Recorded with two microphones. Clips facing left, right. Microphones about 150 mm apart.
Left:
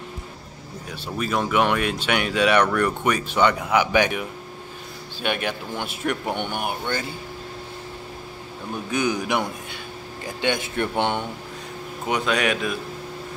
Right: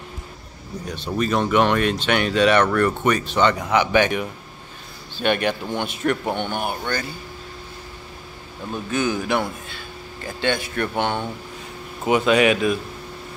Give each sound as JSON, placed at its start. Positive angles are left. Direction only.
{"t": 0.9, "sound": "speech", "side_deg": 10}
{"t": 8.9, "sound": "speech", "side_deg": 15}
{"t": 12.1, "sound": "speech", "side_deg": -5}